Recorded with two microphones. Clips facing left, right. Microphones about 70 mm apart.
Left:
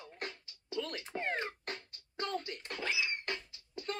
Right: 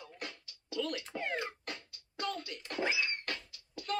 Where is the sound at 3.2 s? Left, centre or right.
Left.